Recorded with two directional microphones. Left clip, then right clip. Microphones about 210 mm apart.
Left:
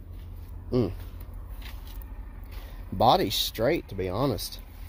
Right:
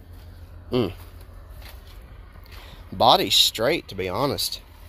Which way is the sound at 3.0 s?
5° right (ahead or behind).